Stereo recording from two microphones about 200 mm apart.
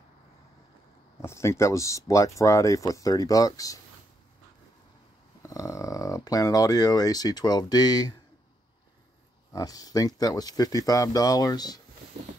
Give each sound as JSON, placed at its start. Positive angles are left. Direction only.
{"t": 1.2, "sound": "speech", "side_deg": 15}
{"t": 5.4, "sound": "speech", "side_deg": 15}
{"t": 9.5, "sound": "speech", "side_deg": 20}